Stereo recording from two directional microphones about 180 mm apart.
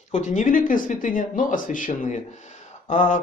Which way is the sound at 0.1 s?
45° left (ahead or behind).